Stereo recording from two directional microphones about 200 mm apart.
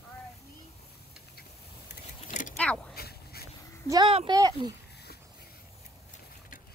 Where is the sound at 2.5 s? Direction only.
5° left (ahead or behind).